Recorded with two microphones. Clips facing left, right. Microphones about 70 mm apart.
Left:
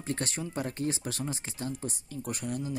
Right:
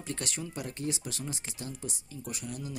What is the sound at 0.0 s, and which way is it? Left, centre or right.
Speech, left.